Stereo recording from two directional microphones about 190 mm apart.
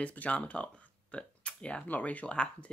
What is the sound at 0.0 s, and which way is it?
Speech, 5° left (ahead or behind).